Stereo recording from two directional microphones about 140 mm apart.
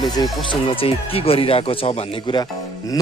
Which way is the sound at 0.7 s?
40° left (ahead or behind).